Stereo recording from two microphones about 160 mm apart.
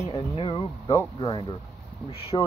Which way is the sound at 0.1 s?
30° left (ahead or behind).